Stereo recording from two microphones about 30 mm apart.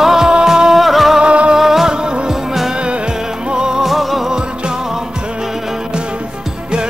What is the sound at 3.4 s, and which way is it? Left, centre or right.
Music, right.